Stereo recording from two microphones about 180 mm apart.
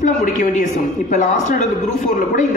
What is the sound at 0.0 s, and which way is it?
Speech, 45° left (ahead or behind).